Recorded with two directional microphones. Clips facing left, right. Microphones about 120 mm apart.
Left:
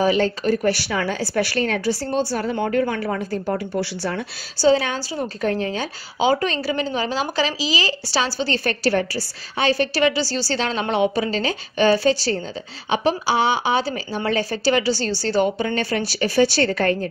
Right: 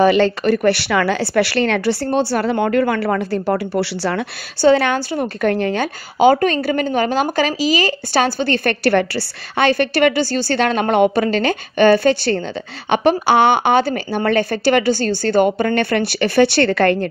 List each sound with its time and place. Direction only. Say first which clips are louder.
0.0 s a woman's voice: right 5 dB; 70° right (ahead or behind)